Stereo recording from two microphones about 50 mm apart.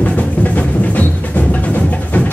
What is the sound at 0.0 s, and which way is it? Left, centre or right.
Music, left.